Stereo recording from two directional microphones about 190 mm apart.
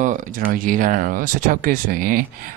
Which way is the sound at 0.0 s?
40° right (ahead or behind).